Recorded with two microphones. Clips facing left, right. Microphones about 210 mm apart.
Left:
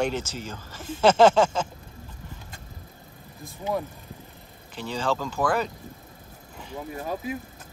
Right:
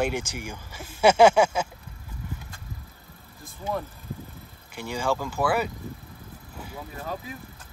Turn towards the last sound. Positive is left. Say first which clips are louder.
# left 4 dB
turn(degrees=20)  # may be behind; listen again after turning